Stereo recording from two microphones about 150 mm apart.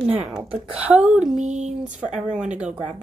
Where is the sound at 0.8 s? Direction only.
5° right (ahead or behind).